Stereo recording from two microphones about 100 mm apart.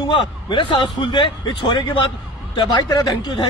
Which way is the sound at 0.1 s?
55° left (ahead or behind).